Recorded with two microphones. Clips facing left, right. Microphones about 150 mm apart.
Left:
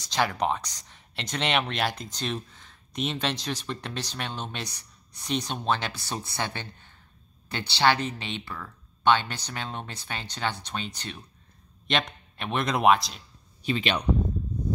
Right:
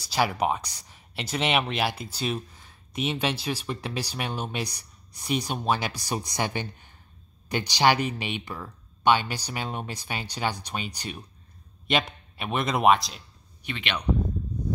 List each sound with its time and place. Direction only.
0.0 s speech: 10° right (ahead or behind)
13.6 s speech: 35° left (ahead or behind)